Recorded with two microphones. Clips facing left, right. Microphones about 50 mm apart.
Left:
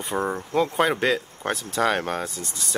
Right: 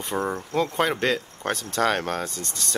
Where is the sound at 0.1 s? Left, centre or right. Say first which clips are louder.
Left 1 dB; centre.